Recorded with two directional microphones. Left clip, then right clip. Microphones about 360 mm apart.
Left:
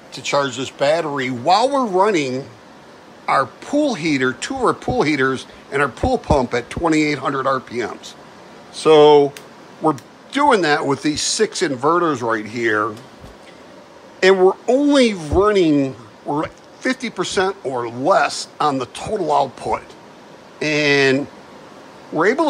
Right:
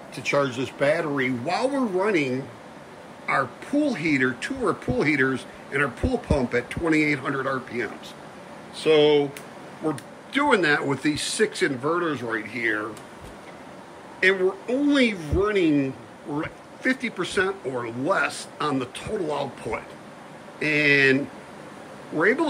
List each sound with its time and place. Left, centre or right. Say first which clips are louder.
0.1 s speech: left 4 dB; centre
9.0 s speech: left 9 dB; centre
14.2 s speech: left 8 dB; centre
22.2 s speech: left 5 dB; centre